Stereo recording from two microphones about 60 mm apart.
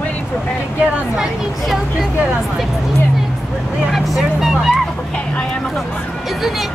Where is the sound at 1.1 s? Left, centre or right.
Centre.